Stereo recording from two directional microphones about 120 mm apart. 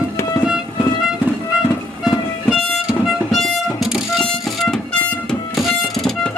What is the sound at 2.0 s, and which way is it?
Music, 5° right (ahead or behind).